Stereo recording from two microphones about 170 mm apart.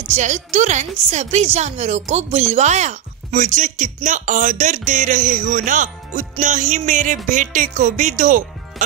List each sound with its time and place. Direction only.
0.1 s a woman's voice: 45° right (ahead or behind)